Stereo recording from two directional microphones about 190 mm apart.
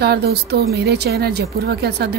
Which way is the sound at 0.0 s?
60° right (ahead or behind).